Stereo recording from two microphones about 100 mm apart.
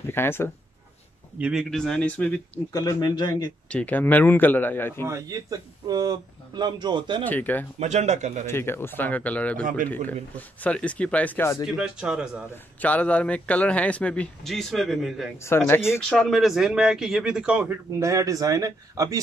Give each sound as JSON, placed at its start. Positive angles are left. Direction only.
{"t": 0.1, "sound": "a man's voice", "side_deg": 25}
{"t": 1.4, "sound": "speech", "side_deg": -5}
{"t": 2.7, "sound": "speech", "side_deg": 40}
{"t": 3.7, "sound": "a man's voice", "side_deg": 15}
{"t": 5.0, "sound": "a man's voice", "side_deg": -30}
{"t": 7.2, "sound": "speech", "side_deg": 15}
{"t": 11.6, "sound": "speech", "side_deg": -5}
{"t": 12.8, "sound": "speech", "side_deg": 15}
{"t": 15.4, "sound": "a man's voice", "side_deg": 25}
{"t": 16.1, "sound": "speech", "side_deg": 0}
{"t": 17.9, "sound": "speech", "side_deg": -35}